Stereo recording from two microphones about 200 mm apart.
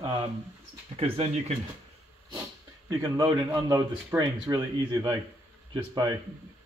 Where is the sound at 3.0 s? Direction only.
20° right (ahead or behind).